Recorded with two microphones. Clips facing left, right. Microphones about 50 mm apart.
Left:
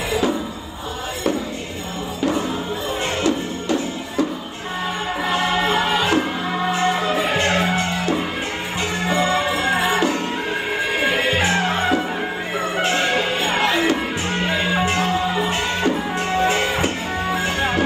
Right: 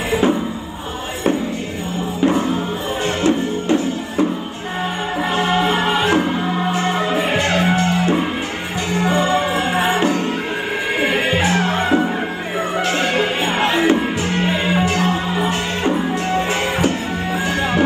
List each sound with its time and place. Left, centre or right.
0.1 s music: right
2.2 s music: right
5.3 s music: right
14.8 s music: left
15.0 s music: right
16.8 s music: left